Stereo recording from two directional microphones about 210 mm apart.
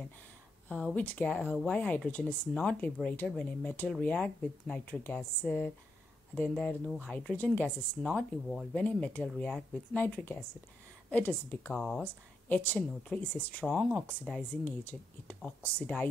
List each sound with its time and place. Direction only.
0.7 s speech: 5° left (ahead or behind)